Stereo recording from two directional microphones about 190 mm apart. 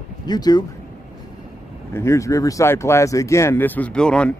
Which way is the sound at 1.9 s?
15° left (ahead or behind).